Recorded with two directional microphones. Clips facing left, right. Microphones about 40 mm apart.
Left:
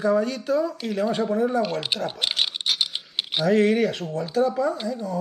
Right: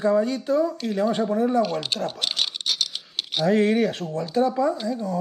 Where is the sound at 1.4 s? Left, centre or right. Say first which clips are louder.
Right 1 dB; centre.